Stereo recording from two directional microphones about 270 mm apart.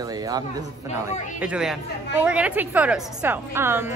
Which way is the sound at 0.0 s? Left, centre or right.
Centre.